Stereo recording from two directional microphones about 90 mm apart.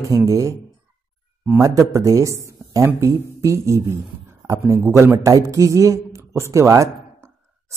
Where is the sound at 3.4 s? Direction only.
35° right (ahead or behind).